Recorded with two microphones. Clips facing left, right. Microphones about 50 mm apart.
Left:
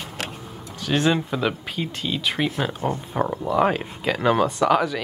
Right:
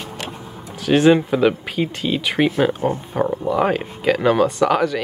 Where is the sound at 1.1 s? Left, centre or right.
Centre.